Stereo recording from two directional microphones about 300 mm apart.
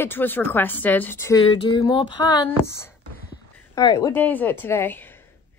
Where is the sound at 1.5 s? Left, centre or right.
Centre.